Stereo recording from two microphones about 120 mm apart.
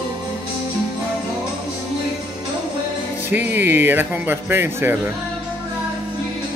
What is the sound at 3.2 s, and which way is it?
Speech, 15° right (ahead or behind).